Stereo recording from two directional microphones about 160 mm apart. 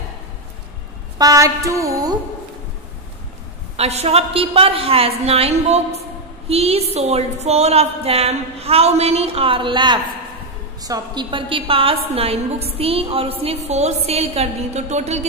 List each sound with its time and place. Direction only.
1.1 s a woman's voice: 20° right (ahead or behind)
3.7 s a woman's voice: 40° right (ahead or behind)